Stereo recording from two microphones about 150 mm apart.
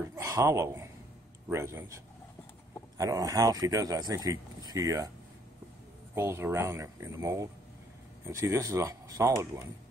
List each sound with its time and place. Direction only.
0.0 s a sound: 20° right (ahead or behind)
1.5 s a man's voice: 15° right (ahead or behind)
3.0 s speech: 25° right (ahead or behind)
6.1 s speech: 15° right (ahead or behind)